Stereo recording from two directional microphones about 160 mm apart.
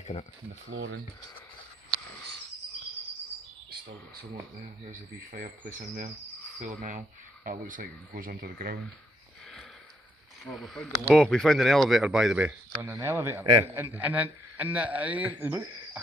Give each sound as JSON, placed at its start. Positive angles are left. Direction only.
{"t": 0.0, "sound": "speech", "side_deg": 45}
{"t": 5.3, "sound": "speech", "side_deg": -55}
{"t": 10.4, "sound": "speech", "side_deg": 0}
{"t": 12.7, "sound": "a man's voice", "side_deg": -20}